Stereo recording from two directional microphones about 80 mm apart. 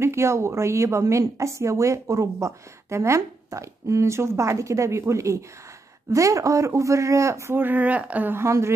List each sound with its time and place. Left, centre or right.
0.0 s speech: right
7.5 s speech: right
8.5 s speech: right